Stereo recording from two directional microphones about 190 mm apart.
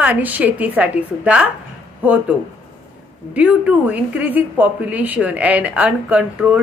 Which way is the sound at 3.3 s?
5° right (ahead or behind).